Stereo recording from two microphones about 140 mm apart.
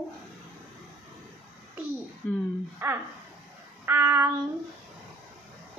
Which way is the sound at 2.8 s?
15° right (ahead or behind).